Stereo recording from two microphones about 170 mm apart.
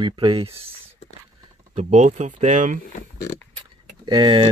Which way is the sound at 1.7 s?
45° right (ahead or behind).